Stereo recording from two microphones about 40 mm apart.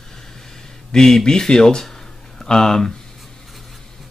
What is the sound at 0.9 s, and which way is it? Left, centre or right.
Speech, centre.